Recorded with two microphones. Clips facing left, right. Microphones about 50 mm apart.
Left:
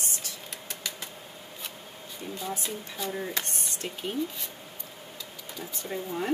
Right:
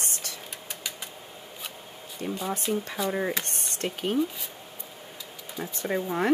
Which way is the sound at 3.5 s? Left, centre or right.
Right.